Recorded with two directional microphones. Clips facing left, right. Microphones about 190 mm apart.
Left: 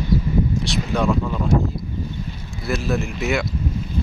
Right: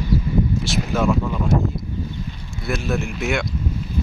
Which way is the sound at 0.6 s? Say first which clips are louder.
Even; centre (ahead or behind).